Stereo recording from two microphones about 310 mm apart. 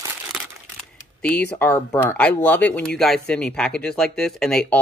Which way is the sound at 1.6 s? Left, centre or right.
Centre.